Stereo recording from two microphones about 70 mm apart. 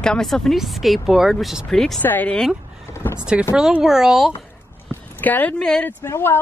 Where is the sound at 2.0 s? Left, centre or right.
Left.